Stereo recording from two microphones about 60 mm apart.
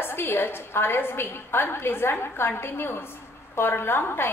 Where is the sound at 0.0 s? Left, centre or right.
Left.